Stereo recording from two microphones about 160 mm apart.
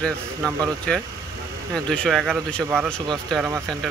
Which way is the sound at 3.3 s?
5° left (ahead or behind).